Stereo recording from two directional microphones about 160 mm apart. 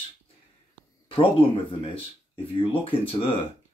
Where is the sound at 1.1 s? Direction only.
35° left (ahead or behind).